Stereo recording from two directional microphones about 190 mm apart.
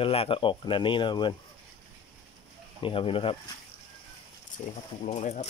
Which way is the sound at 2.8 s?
25° left (ahead or behind).